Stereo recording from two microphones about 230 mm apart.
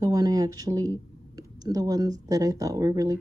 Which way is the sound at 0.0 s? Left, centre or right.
Centre.